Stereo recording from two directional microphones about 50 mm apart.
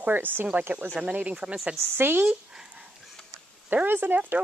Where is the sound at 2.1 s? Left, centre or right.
Right.